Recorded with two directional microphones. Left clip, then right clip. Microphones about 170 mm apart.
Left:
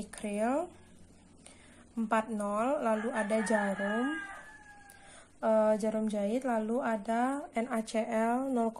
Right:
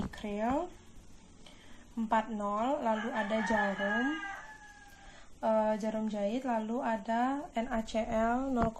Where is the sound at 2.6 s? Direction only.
20° left (ahead or behind).